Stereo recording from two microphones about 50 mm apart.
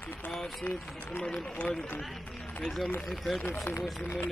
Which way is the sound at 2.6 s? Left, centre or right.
Centre.